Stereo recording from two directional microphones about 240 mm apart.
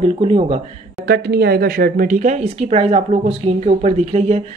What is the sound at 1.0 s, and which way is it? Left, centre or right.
Speech, right.